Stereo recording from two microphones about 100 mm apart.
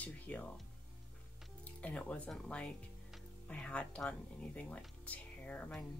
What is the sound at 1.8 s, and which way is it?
Speech, 15° left (ahead or behind).